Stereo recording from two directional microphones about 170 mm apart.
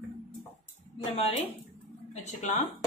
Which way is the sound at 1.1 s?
40° left (ahead or behind).